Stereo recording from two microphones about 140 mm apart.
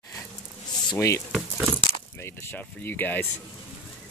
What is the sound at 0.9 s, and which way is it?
Speech, 20° left (ahead or behind).